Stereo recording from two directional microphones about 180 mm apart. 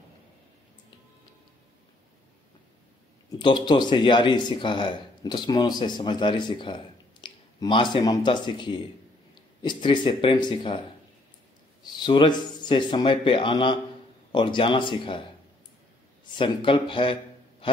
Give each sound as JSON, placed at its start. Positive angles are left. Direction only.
{"t": 3.3, "sound": "speech", "side_deg": 25}
{"t": 11.8, "sound": "speech", "side_deg": 25}
{"t": 16.3, "sound": "speech", "side_deg": 30}